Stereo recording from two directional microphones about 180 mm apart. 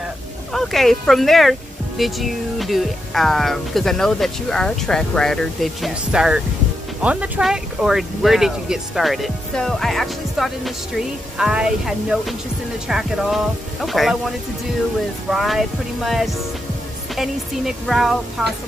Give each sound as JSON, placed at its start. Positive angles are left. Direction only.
{"t": 0.5, "sound": "speech", "side_deg": 0}
{"t": 15.2, "sound": "speech", "side_deg": 0}